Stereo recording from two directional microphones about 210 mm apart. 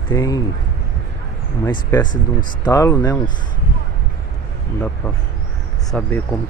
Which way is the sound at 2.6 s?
15° left (ahead or behind).